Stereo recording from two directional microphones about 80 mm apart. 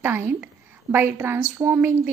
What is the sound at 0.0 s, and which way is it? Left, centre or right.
A woman's voice, right.